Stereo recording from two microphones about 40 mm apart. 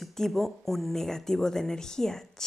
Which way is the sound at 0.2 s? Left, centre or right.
Centre.